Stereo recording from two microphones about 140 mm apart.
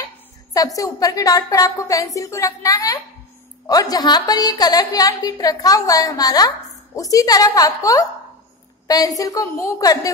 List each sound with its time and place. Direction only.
0.7 s a woman's voice: 25° left (ahead or behind)